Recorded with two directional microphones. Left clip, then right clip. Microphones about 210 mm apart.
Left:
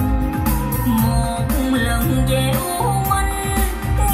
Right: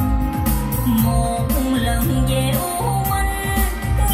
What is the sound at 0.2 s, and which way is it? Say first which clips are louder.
Music: left 1 dB; 15° right (ahead or behind).